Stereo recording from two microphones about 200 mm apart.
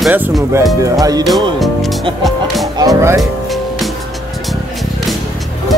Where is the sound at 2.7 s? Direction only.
20° right (ahead or behind).